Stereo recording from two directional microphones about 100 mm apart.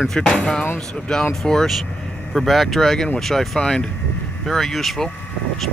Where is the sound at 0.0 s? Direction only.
5° left (ahead or behind).